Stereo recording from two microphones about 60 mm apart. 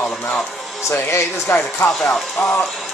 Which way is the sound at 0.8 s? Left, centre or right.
Left.